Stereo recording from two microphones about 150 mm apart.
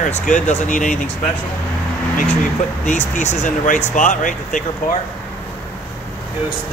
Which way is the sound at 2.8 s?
50° left (ahead or behind).